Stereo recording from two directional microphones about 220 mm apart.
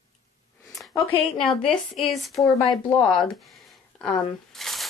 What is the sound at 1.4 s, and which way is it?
A woman's voice, 5° left (ahead or behind).